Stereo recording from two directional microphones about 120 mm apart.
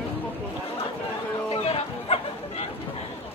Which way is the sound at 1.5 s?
55° left (ahead or behind).